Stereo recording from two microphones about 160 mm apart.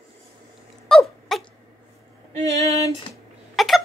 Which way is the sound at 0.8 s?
Centre (ahead or behind).